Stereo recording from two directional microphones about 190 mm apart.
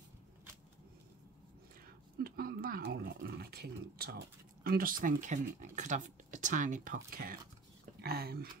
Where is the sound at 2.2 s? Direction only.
50° right (ahead or behind).